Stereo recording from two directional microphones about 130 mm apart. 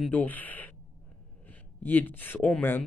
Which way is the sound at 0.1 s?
15° left (ahead or behind).